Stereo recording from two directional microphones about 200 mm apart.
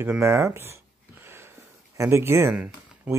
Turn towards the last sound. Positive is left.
turn(degrees=-10)  # may be behind; listen again after turning